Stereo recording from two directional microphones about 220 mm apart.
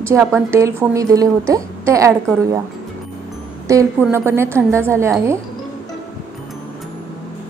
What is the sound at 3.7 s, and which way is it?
A woman's voice, 15° right (ahead or behind).